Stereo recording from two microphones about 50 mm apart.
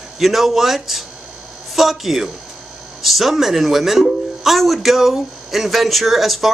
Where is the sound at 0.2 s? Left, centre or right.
Centre.